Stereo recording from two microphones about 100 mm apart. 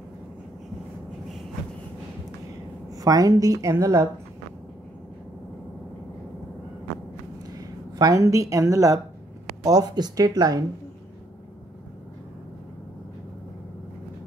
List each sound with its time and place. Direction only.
3.0 s speech: 35° right (ahead or behind)
7.5 s a woman's voice: 40° right (ahead or behind)